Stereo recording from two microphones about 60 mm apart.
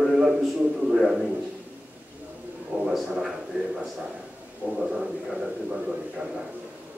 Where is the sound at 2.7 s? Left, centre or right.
Centre.